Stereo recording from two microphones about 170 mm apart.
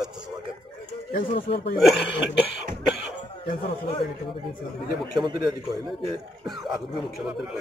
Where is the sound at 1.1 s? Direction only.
55° left (ahead or behind).